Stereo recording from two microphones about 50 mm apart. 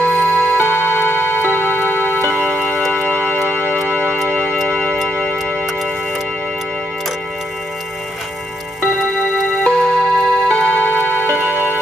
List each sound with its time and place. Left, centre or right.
0.0 s music: right
0.6 s music: left
2.3 s music: right
4.3 s music: left
9.7 s music: centre
11.3 s music: right